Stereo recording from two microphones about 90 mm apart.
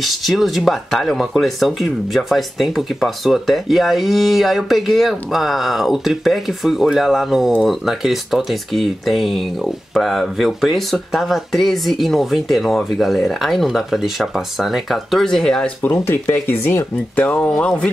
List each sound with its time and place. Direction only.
0.0 s speech: centre (ahead or behind)
15.8 s speech: 25° left (ahead or behind)